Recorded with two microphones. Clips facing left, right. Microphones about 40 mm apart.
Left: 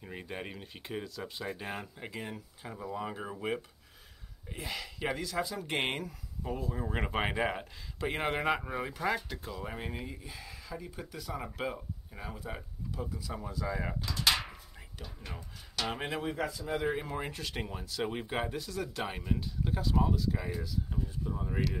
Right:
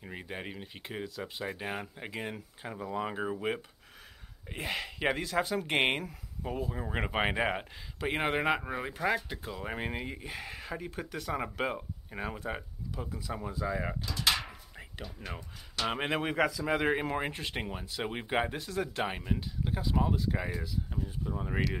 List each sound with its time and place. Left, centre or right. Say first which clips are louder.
0.0 s speech: right 1 dB; centre
4.5 s speech: right 4 dB; right
5.8 s speech: right 4 dB; right
9.6 s speech: right 5 dB; right
11.1 s speech: right 6 dB; right
11.4 s speech: right 3 dB; right; by 13.9 s centre
14.8 s speech: right 7 dB; right
15.9 s speech: right 6 dB; right
16.2 s speech: right 5 dB; right
16.9 s speech: right 5 dB; right
19.0 s speech: right 1 dB; centre
20.1 s speech: right 1 dB; right
21.2 s speech: right 2 dB; centre